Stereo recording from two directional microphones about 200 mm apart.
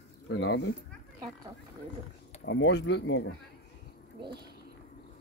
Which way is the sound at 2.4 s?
60° left (ahead or behind).